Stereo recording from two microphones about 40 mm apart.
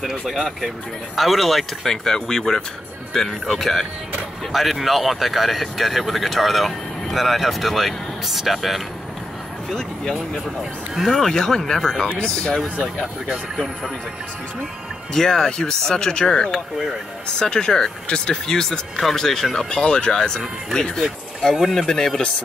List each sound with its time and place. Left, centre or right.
1.1 s speech: centre
1.9 s speech: centre
4.5 s speech: centre
11.0 s speech: centre; by 12.6 s left
15.1 s speech: centre
19.7 s speech: left